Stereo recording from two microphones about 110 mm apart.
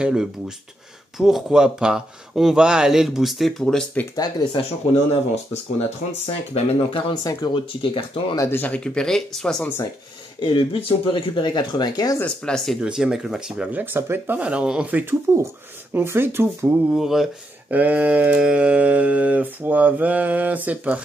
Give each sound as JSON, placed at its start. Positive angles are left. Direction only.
{"t": 0.0, "sound": "speech", "side_deg": -5}
{"t": 5.3, "sound": "speech", "side_deg": 80}
{"t": 7.2, "sound": "speech", "side_deg": 45}
{"t": 8.4, "sound": "speech", "side_deg": 20}
{"t": 10.4, "sound": "speech", "side_deg": 55}
{"t": 12.2, "sound": "speech", "side_deg": 10}
{"t": 12.8, "sound": "speech", "side_deg": -5}
{"t": 13.7, "sound": "speech", "side_deg": -15}
{"t": 16.9, "sound": "speech", "side_deg": -5}
{"t": 17.6, "sound": "speech", "side_deg": -15}